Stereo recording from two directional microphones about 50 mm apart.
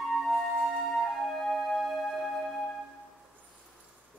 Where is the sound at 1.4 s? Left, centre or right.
Centre.